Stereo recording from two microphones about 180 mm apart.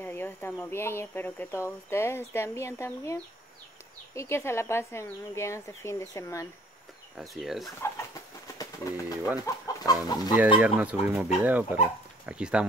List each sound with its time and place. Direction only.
0.0 s speech: 10° left (ahead or behind)
7.2 s speech: centre (ahead or behind)
7.8 s bird: 20° left (ahead or behind)
9.8 s chicken: 20° left (ahead or behind)
10.6 s speech: 10° right (ahead or behind)